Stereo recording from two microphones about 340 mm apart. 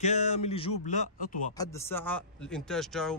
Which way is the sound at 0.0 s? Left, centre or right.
Centre.